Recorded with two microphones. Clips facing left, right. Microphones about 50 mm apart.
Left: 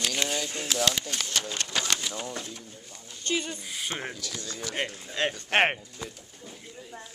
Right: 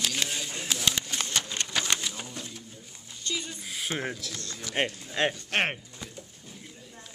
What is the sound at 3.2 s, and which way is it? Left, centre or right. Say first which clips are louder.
Speech: left 5 dB; left.